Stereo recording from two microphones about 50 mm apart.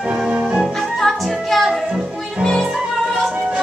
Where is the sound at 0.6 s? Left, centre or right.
Centre.